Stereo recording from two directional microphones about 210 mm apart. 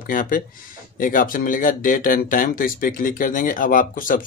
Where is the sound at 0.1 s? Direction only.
40° left (ahead or behind).